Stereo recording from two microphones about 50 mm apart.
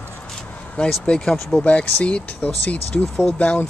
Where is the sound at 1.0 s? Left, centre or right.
Centre.